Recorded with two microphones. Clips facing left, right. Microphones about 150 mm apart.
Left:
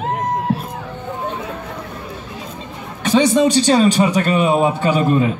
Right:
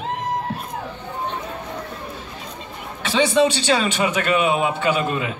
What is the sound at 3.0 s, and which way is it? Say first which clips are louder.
Speech: left 4 dB; 45° left (ahead or behind).